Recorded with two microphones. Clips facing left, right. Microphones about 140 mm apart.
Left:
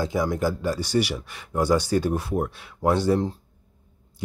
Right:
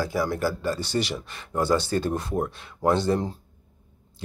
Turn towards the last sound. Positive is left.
turn(degrees=10)  # may be behind; listen again after turning